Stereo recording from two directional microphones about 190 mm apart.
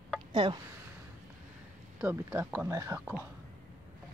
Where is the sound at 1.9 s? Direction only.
10° right (ahead or behind).